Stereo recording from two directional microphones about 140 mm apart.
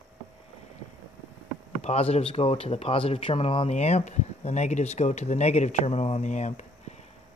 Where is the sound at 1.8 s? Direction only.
45° left (ahead or behind).